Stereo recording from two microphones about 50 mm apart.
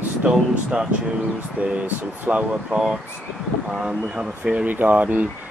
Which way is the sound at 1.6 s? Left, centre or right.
Right.